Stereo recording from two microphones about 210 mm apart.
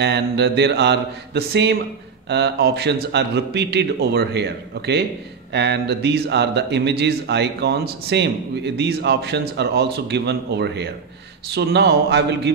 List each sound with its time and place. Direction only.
0.0 s speech: 55° right (ahead or behind)